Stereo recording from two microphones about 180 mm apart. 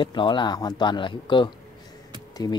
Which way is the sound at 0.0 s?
25° left (ahead or behind).